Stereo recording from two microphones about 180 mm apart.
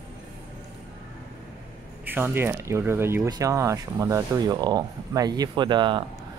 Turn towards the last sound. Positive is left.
turn(degrees=-25)  # may be behind; listen again after turning